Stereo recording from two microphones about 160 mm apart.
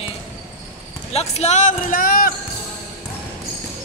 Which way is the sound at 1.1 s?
45° left (ahead or behind).